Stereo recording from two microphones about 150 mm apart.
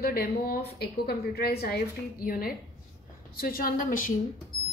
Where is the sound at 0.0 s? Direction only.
90° left; by 4.1 s 65° left (ahead or behind).